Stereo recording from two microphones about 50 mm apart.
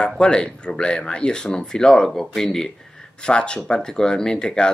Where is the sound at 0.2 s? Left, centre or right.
Centre.